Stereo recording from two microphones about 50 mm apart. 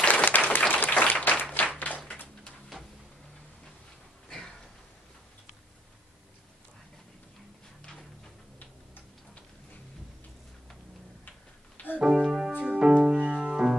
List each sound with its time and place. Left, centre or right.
0.1 s applause: left
1.4 s clapping: left
11.2 s a sound: left
12.0 s keyboard: centre
12.5 s music: centre